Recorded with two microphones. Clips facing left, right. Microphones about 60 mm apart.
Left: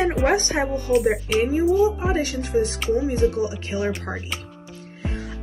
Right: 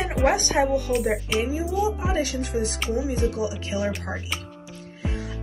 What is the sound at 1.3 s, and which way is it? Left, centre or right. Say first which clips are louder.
Speech: left 10 dB; left.